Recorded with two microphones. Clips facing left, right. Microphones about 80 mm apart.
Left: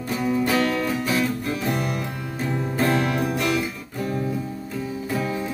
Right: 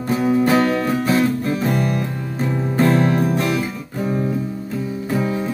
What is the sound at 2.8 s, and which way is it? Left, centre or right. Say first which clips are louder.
Music: right 6 dB; right.